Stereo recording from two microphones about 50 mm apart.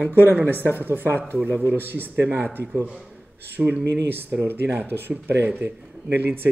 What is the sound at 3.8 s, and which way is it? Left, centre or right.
Speech, right.